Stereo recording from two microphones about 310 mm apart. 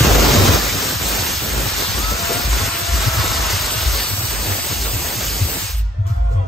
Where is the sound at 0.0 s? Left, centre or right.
Centre.